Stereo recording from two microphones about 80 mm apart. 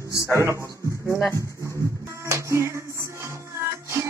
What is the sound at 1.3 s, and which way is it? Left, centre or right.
Music, left.